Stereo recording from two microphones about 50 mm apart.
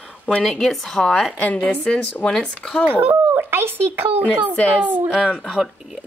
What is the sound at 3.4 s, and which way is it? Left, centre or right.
Speech, right.